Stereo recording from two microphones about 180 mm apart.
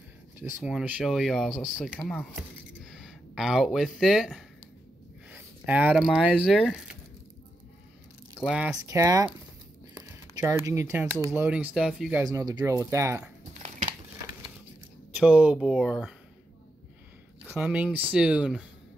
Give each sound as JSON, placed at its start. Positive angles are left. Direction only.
{"t": 0.4, "sound": "speech", "side_deg": -5}
{"t": 8.5, "sound": "speech", "side_deg": -5}
{"t": 8.8, "sound": "speech", "side_deg": -20}
{"t": 12.3, "sound": "speech", "side_deg": -20}
{"t": 13.5, "sound": "a sound", "side_deg": -40}
{"t": 15.1, "sound": "speech", "side_deg": -5}
{"t": 17.6, "sound": "speech", "side_deg": -10}